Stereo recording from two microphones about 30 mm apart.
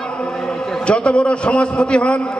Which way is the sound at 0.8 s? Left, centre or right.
Left.